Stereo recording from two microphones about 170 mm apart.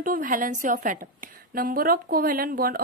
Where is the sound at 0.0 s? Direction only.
55° right (ahead or behind).